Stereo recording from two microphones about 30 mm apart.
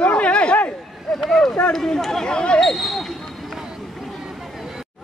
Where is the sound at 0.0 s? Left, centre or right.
Left.